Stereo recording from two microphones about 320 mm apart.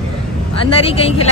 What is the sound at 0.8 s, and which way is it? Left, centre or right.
Speech, centre.